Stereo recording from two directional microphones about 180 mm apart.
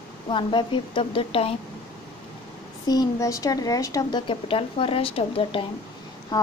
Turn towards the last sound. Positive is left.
turn(degrees=20)  # may be behind; listen again after turning